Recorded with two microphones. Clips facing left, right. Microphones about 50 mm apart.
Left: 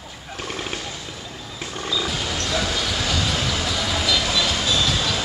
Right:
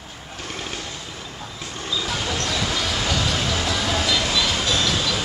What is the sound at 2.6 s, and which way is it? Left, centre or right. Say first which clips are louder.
Vehicle: even; centre.